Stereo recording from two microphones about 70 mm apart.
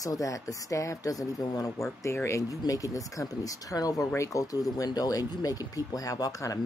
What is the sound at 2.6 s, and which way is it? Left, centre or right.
Speech, left.